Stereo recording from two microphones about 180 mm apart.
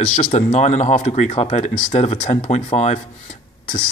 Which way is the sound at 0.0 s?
45° left (ahead or behind).